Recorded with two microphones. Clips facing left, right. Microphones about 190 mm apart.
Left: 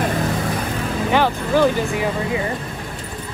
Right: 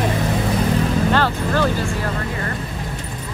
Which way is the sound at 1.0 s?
15° left (ahead or behind).